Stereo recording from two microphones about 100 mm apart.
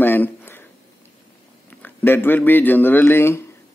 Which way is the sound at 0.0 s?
20° left (ahead or behind).